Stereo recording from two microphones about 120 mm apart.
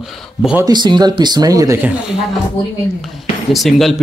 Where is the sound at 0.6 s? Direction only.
40° right (ahead or behind).